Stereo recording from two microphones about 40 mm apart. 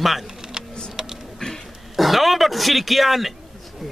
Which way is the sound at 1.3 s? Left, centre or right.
Centre.